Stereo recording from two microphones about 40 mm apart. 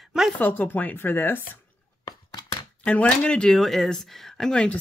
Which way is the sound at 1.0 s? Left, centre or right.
Left.